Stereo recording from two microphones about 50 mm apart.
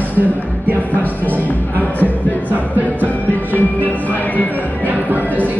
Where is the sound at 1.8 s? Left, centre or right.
Left.